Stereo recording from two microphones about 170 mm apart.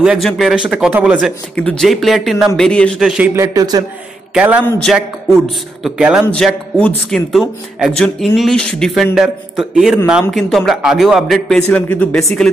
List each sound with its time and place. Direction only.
0.0 s speech: 5° right (ahead or behind)
1.5 s speech: 5° left (ahead or behind)
3.3 s a man's voice: 20° right (ahead or behind)
4.3 s a man's voice: 5° right (ahead or behind)
4.6 s speech: 5° left (ahead or behind)
6.2 s speech: 5° left (ahead or behind)